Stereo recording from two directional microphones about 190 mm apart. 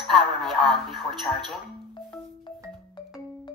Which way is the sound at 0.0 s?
Centre (ahead or behind).